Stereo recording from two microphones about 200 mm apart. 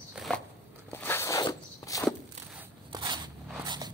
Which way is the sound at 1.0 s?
15° left (ahead or behind).